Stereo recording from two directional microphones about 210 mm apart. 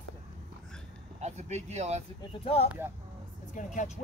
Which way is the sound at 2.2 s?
25° left (ahead or behind).